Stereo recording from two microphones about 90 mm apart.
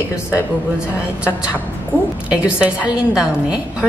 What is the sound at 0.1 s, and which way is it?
Speech, 30° left (ahead or behind).